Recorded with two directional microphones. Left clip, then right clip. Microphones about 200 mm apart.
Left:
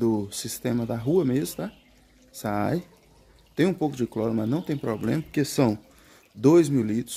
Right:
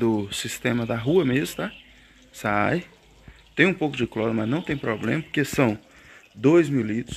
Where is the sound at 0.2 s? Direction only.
10° left (ahead or behind).